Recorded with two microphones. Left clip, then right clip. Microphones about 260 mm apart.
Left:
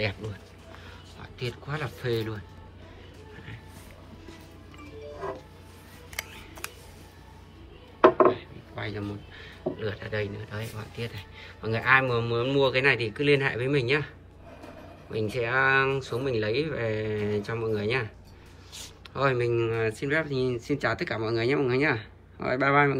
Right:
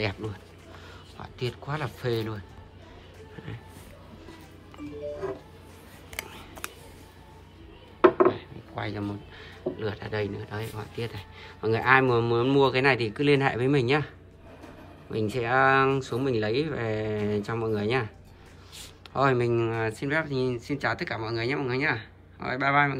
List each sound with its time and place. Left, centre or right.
0.0 s speech: centre
6.1 s a sound: centre
8.3 s speech: centre
19.1 s speech: centre